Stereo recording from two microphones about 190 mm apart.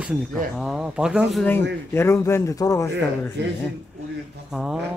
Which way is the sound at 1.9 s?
15° left (ahead or behind).